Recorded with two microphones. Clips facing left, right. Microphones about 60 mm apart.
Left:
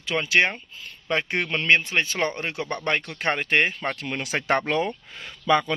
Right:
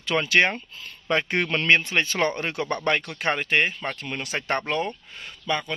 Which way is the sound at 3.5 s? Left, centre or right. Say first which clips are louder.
Left 1 dB; left.